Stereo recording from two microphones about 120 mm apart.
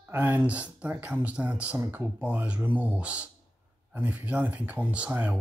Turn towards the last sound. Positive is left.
turn(degrees=-15)  # may be behind; listen again after turning